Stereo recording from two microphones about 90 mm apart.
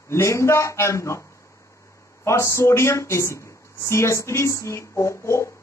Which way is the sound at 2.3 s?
30° left (ahead or behind).